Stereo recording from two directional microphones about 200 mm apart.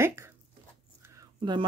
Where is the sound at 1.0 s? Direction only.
15° right (ahead or behind).